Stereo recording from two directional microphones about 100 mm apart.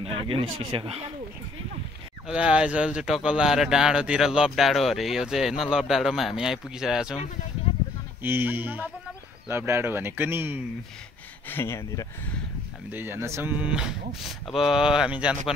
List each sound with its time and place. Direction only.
0.0 s speech: 65° right (ahead or behind)
2.2 s speech: 10° right (ahead or behind)
8.2 s speech: 20° right (ahead or behind)
11.4 s speech: 25° left (ahead or behind)
12.9 s speech: 20° right (ahead or behind)
13.7 s speech: 10° right (ahead or behind)